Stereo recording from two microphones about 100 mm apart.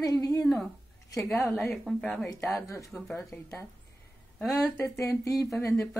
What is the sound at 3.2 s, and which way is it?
Speech, centre (ahead or behind).